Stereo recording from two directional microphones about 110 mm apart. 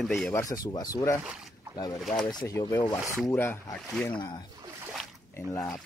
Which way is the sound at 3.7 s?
5° left (ahead or behind).